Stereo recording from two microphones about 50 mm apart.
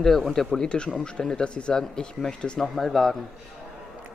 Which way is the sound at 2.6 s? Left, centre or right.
Centre.